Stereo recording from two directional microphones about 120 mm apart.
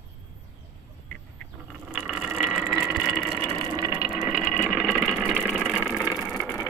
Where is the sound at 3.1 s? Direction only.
10° left (ahead or behind).